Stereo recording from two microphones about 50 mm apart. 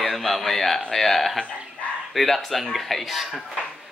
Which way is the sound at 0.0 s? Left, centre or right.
Centre.